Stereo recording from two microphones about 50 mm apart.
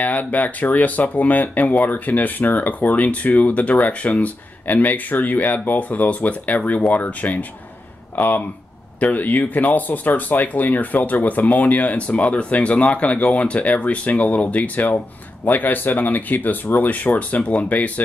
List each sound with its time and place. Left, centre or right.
0.0 s speech: left